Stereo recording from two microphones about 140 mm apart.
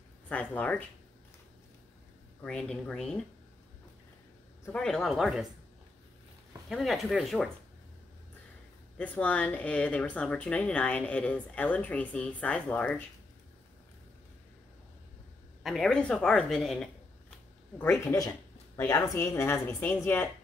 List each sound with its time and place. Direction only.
0.3 s speech: 10° left (ahead or behind)
2.4 s speech: 5° left (ahead or behind)
4.7 s speech: 5° left (ahead or behind)
6.7 s speech: centre (ahead or behind)
8.9 s speech: 10° left (ahead or behind)
15.6 s speech: centre (ahead or behind)
17.7 s speech: 15° left (ahead or behind)